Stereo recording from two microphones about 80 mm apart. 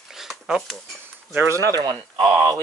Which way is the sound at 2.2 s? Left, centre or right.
Right.